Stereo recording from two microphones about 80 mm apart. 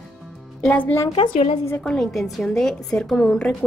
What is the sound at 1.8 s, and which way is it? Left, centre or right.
A woman's voice, centre.